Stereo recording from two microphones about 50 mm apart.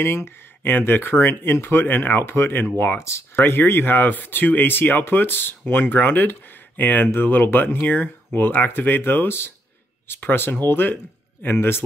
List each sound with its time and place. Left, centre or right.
0.0 s speech: left
3.0 s speech: left
3.3 s speech: left